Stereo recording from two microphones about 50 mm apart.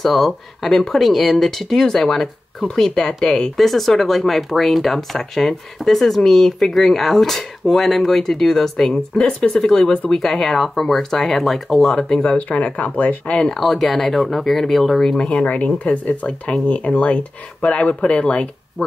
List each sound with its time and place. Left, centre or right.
0.0 s speech: centre
3.5 s speech: centre
12.0 s speech: centre
13.4 s speech: centre
15.4 s speech: left